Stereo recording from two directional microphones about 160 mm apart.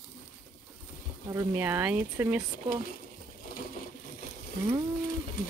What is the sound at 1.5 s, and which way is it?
Speech, 10° right (ahead or behind).